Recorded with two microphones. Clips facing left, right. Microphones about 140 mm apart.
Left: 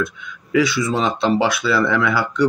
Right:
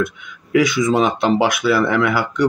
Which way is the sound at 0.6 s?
20° right (ahead or behind).